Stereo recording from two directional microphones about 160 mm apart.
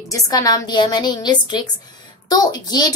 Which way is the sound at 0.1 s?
20° left (ahead or behind).